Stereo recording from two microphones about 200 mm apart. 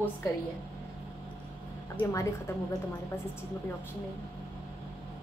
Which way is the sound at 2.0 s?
15° left (ahead or behind).